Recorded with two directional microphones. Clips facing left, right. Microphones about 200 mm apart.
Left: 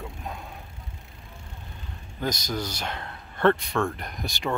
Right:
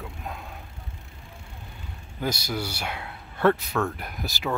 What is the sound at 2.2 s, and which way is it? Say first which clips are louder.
Speech: even; 10° right (ahead or behind).